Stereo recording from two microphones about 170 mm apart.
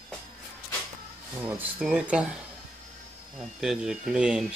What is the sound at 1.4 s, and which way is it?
Speech, 10° right (ahead or behind).